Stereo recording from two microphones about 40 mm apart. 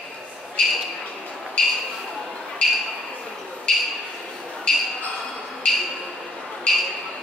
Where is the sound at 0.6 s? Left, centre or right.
Centre.